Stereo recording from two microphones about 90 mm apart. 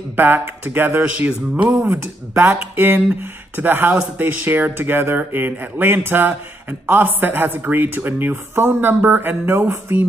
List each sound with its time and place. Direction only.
0.1 s speech: 20° right (ahead or behind)